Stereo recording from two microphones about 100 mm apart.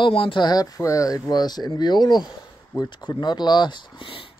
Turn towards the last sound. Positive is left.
turn(degrees=60)  # may be behind; listen again after turning